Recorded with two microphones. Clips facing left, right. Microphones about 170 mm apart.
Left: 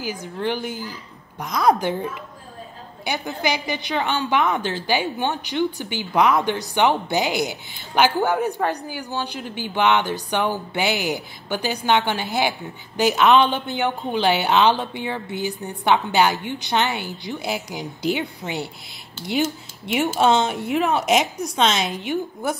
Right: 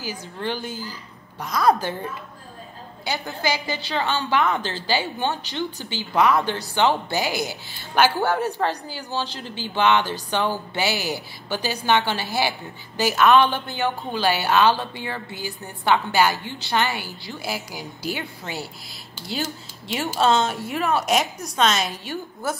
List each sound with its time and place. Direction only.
0.0 s a woman's voice: 15° left (ahead or behind)
3.1 s a woman's voice: 15° left (ahead or behind)
20.2 s a woman's voice: 20° left (ahead or behind)